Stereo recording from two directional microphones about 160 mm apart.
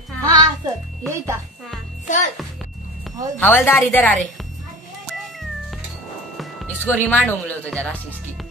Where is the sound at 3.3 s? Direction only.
10° left (ahead or behind).